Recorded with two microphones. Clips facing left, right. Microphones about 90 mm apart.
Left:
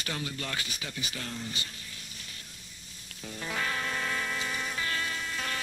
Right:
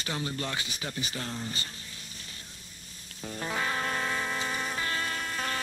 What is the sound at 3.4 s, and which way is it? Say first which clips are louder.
Music: right 2 dB; 30° right (ahead or behind).